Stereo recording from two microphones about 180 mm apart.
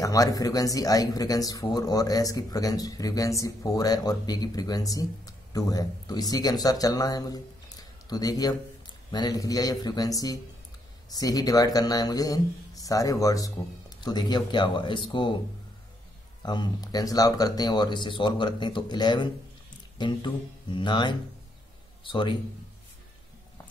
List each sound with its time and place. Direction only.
0.0 s speech: 20° left (ahead or behind)
16.4 s a man's voice: 25° left (ahead or behind)